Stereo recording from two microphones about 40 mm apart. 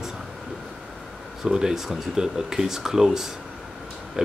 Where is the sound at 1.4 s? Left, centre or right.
Centre.